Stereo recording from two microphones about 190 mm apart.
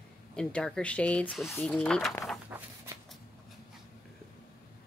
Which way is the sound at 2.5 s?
15° right (ahead or behind).